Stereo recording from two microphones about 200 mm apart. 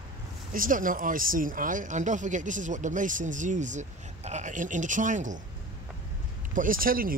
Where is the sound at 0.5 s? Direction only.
45° right (ahead or behind).